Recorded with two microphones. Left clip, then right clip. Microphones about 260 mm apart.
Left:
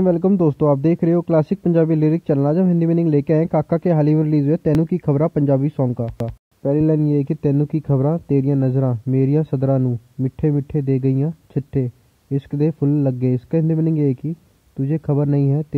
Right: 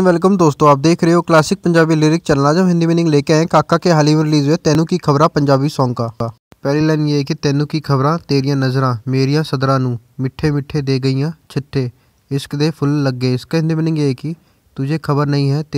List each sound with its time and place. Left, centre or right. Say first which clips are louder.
0.0 s speech: right 5 dB; right
6.7 s speech: right 2 dB; centre